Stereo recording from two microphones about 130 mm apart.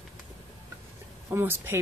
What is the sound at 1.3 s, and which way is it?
Speech, 20° right (ahead or behind).